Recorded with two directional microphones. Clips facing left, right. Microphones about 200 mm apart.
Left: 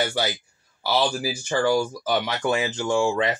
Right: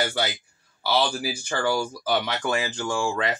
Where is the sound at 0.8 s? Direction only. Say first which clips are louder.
Left 1 dB; 15° left (ahead or behind).